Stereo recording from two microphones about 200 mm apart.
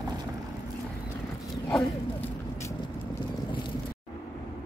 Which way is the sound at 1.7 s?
10° left (ahead or behind).